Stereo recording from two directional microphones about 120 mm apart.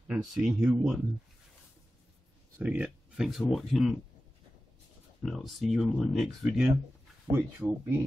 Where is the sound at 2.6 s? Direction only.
10° right (ahead or behind).